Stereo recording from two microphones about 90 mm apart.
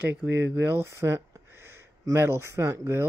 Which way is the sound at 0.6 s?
25° right (ahead or behind).